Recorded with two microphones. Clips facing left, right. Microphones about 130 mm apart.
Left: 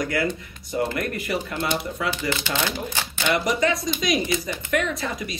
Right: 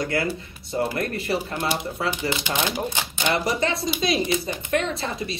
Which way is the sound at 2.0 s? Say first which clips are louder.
Right 2 dB; 15° right (ahead or behind).